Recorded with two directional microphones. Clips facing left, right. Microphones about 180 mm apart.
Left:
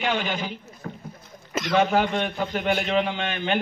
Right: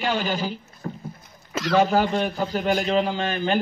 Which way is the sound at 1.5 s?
Centre (ahead or behind).